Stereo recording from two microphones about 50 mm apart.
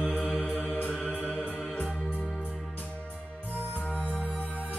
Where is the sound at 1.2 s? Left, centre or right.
Right.